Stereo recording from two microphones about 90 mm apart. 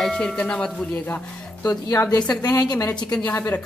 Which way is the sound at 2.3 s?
45° left (ahead or behind).